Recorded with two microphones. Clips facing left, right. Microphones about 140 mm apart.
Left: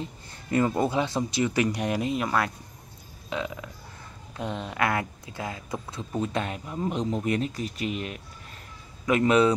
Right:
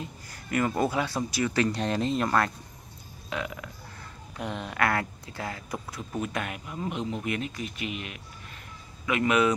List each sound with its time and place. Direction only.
0.0 s speech: 25° left (ahead or behind); by 2.5 s 5° left (ahead or behind)
3.3 s a man's voice: 20° left (ahead or behind)